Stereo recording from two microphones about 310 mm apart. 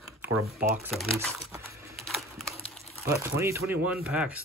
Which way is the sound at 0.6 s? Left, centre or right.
Centre.